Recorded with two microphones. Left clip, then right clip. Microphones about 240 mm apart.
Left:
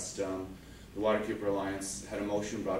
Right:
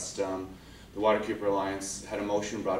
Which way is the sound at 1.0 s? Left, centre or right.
Centre.